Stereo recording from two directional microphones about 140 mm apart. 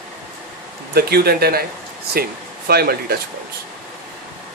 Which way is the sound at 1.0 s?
90° right.